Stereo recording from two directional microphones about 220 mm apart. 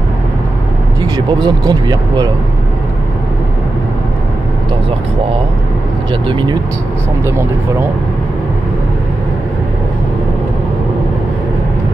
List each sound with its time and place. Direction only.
1.0 s speech: 15° right (ahead or behind)
6.2 s speech: 20° right (ahead or behind)